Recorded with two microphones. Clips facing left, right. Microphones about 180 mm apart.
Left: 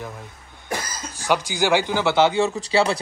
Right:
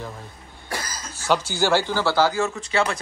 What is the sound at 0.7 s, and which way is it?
Speech, 15° left (ahead or behind).